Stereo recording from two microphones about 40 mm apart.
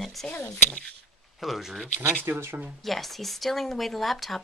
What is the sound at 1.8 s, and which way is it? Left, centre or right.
Speech, left.